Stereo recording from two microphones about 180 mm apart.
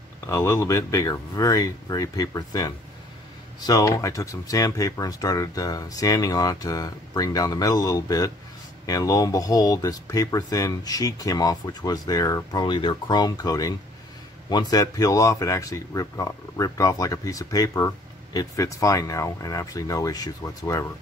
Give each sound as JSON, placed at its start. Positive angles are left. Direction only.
{"t": 0.3, "sound": "speech", "side_deg": 15}